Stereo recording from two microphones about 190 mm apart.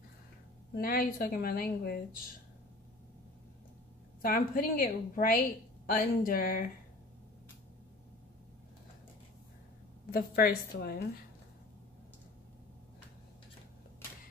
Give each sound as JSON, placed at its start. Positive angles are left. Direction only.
{"t": 0.7, "sound": "speech", "side_deg": 50}
{"t": 4.2, "sound": "speech", "side_deg": 50}
{"t": 10.1, "sound": "speech", "side_deg": 50}